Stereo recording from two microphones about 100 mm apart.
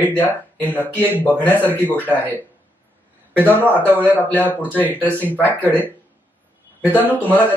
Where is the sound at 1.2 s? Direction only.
20° left (ahead or behind).